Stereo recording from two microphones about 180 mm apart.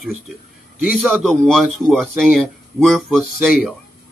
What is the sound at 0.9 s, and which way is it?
Speech, centre (ahead or behind).